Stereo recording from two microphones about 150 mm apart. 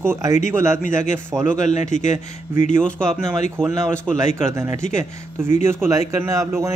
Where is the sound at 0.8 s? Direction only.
55° left (ahead or behind).